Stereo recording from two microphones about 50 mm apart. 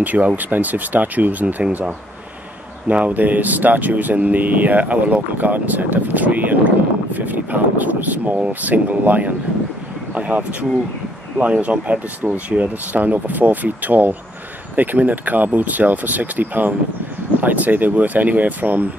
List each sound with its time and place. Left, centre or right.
0.0 s speech: right